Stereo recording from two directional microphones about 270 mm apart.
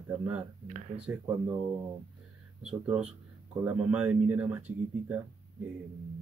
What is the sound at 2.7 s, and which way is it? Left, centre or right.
Speech, right.